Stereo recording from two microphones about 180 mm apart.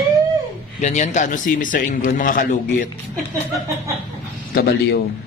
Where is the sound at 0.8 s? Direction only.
40° left (ahead or behind).